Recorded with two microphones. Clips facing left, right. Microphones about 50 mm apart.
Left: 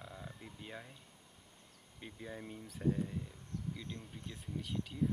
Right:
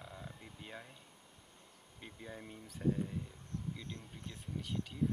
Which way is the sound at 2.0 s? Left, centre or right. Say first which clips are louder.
Left 2 dB; centre.